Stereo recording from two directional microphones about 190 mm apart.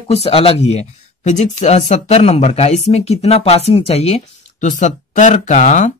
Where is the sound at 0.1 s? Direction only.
30° left (ahead or behind).